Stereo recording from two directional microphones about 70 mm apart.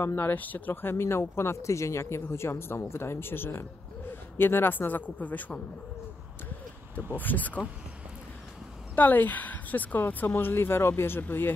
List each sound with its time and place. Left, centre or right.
0.0 s speech: left
7.1 s speech: left
8.9 s speech: left